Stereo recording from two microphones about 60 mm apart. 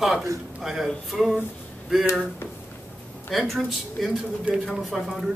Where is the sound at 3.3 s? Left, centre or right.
Centre.